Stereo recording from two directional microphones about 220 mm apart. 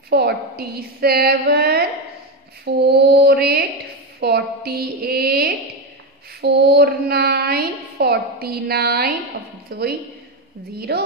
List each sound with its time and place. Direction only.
0.1 s a woman's voice: 45° right (ahead or behind)